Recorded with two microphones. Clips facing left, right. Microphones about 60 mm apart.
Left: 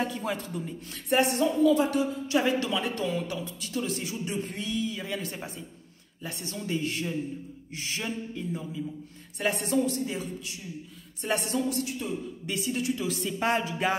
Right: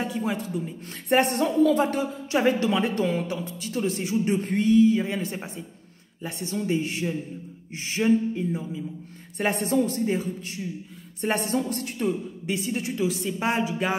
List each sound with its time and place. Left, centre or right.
0.0 s a woman's voice: centre
1.0 s speech: right
4.2 s speech: right
12.4 s speech: right
13.0 s a woman's voice: centre